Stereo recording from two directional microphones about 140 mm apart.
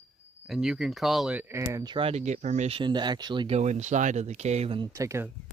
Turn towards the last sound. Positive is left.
turn(degrees=-20)  # may be behind; listen again after turning